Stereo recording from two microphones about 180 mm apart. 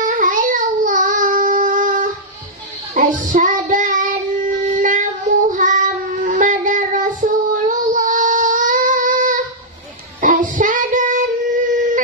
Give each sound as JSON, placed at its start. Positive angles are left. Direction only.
{"t": 0.0, "sound": "child singing", "side_deg": -45}